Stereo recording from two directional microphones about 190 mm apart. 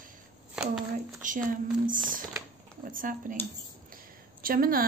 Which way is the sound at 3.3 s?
45° right (ahead or behind).